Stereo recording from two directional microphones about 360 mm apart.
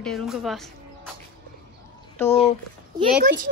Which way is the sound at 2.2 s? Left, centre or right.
Centre.